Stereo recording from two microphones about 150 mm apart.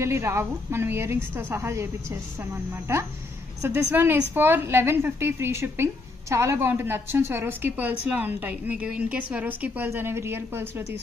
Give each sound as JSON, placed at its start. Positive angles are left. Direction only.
{"t": 0.0, "sound": "a woman's voice", "side_deg": -20}